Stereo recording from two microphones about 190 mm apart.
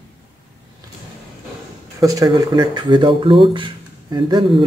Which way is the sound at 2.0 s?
20° right (ahead or behind).